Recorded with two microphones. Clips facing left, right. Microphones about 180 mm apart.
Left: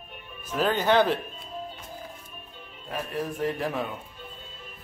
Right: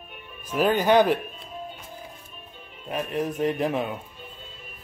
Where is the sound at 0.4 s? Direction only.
15° right (ahead or behind).